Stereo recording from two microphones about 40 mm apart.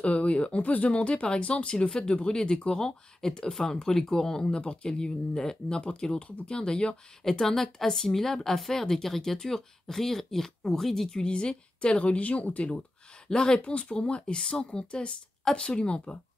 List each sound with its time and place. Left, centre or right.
0.0 s speech: left
7.2 s speech: centre
11.1 s speech: left
13.3 s speech: centre